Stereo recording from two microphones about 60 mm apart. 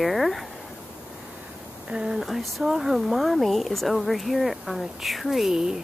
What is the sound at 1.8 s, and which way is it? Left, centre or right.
Speech, centre.